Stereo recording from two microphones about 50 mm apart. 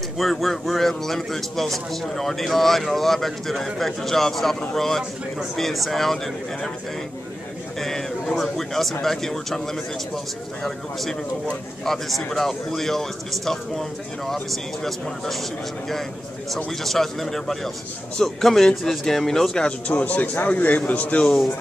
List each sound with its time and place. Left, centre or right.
0.2 s a man's voice: centre
7.8 s a man's voice: centre
16.8 s a man's voice: centre
19.9 s a man's voice: left
21.2 s speech: centre